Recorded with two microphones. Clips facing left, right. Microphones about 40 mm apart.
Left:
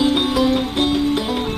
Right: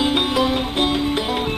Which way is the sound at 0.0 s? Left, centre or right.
Centre.